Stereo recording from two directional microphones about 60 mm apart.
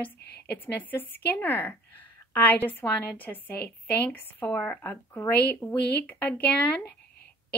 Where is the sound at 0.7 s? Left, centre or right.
Left.